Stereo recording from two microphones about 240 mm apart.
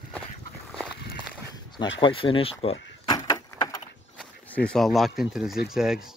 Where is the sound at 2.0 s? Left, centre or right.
Left.